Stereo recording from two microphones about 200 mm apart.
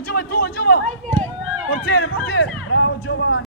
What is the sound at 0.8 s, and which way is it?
Speech, 5° left (ahead or behind).